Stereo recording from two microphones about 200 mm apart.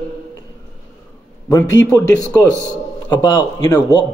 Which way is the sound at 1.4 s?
15° left (ahead or behind).